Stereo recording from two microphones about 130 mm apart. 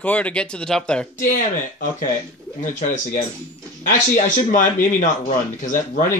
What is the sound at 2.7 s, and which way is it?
A man's voice, 80° left.